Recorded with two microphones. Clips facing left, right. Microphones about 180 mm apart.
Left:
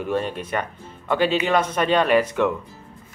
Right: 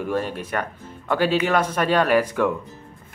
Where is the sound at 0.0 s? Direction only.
10° right (ahead or behind).